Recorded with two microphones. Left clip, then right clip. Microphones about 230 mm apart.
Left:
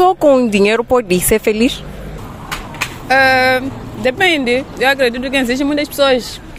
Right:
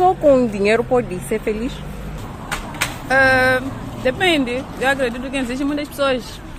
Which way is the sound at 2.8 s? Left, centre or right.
Left.